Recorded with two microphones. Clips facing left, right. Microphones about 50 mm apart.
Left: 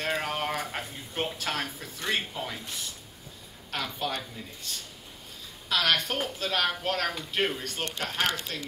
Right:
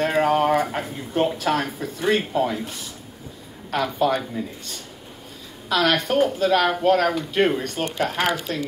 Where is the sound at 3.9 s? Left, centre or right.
Centre.